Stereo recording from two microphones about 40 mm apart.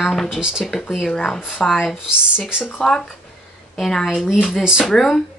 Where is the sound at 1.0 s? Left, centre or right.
Centre.